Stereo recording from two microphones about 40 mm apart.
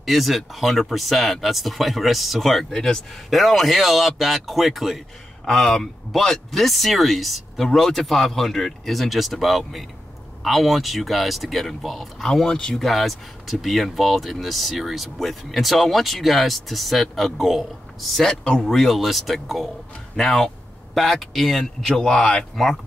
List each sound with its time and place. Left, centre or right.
0.0 s speech: centre
2.7 s speech: centre
3.3 s speech: centre
5.4 s speech: centre
12.4 s speech: centre
12.7 s speech: centre
18.3 s speech: left
18.6 s speech: centre
20.2 s speech: centre